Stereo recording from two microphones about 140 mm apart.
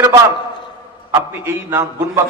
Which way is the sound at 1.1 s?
20° right (ahead or behind).